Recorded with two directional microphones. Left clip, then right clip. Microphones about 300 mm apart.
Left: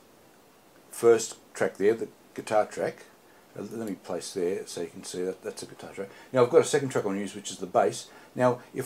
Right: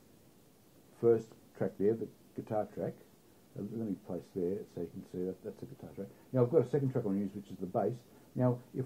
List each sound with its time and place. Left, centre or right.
0.9 s speech: centre